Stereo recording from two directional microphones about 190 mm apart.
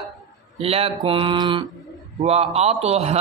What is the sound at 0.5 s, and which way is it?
Speech, 30° right (ahead or behind).